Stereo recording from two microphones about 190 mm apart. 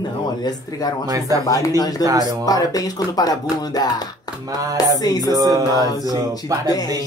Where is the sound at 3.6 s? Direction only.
20° left (ahead or behind).